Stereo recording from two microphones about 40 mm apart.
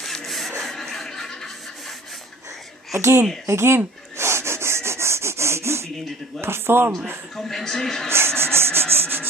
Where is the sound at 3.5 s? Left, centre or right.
Right.